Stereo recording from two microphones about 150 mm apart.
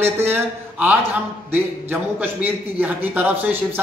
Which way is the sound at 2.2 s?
10° right (ahead or behind).